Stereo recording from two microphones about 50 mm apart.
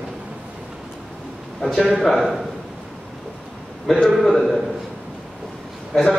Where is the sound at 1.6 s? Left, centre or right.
Centre.